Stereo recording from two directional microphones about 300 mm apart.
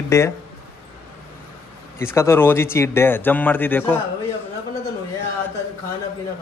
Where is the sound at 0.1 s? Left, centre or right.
Centre.